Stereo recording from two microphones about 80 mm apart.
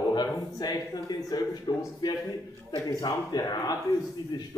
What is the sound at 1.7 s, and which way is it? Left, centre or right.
Speech, left.